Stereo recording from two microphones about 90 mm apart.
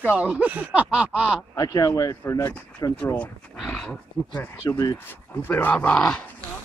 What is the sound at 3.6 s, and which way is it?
Roaring cats, 5° left (ahead or behind).